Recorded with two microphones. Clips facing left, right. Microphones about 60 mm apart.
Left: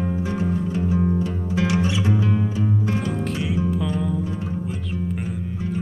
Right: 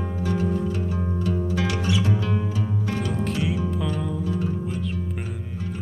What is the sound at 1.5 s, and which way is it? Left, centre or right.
Music, left.